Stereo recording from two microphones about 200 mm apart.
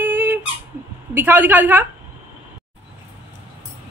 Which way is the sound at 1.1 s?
10° right (ahead or behind).